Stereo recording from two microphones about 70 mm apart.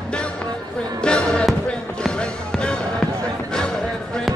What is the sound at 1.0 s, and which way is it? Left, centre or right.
Music, centre.